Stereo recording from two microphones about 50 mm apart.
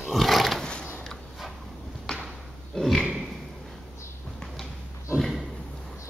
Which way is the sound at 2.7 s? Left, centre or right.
Centre.